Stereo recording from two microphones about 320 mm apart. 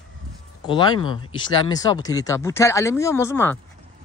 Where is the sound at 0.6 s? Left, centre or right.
Centre.